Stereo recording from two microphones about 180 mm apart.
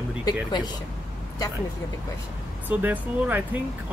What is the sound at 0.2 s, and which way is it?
Speech, 25° left (ahead or behind).